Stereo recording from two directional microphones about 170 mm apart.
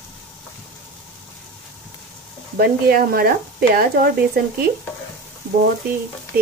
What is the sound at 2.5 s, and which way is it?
Speech, 65° right (ahead or behind).